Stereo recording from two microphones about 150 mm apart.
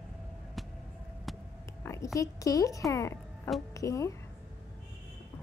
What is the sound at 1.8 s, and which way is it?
A woman's voice, 20° left (ahead or behind).